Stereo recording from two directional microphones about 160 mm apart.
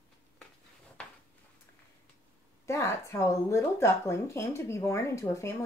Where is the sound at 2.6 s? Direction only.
20° left (ahead or behind).